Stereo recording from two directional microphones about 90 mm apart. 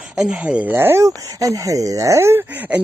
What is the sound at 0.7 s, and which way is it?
Speech, 30° right (ahead or behind).